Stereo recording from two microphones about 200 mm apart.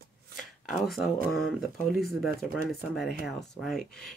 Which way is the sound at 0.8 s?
Centre (ahead or behind).